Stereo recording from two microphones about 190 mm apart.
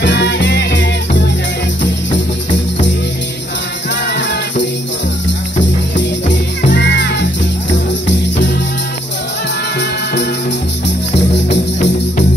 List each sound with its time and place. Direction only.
0.0 s music: 65° left (ahead or behind)
4.1 s music: 60° left (ahead or behind)
6.7 s music: 65° left (ahead or behind)
11.4 s music: 40° left (ahead or behind)